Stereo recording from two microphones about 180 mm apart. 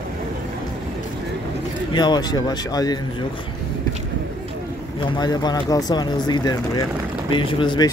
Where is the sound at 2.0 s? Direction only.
25° left (ahead or behind).